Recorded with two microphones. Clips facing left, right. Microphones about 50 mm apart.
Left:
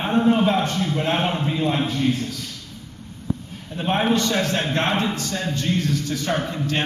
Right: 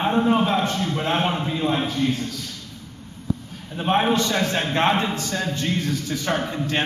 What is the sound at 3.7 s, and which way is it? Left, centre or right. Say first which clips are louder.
A man's voice: right 1 dB; centre.